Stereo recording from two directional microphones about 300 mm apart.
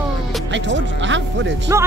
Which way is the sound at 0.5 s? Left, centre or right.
Right.